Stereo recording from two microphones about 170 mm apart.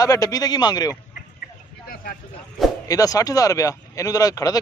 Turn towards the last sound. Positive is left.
turn(degrees=20)  # may be behind; listen again after turning